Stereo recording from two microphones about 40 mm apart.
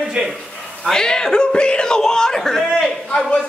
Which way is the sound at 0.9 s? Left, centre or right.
Centre.